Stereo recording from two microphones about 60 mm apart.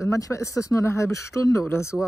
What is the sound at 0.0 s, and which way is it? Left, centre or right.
Speech, left.